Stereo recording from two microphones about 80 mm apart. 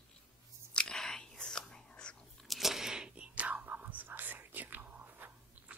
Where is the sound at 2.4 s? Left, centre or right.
Centre.